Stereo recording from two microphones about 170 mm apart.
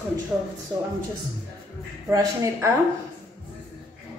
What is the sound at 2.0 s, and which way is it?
Speech, 15° right (ahead or behind).